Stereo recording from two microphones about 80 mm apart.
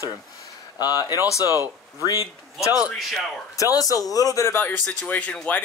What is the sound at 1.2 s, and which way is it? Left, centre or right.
Speech, left.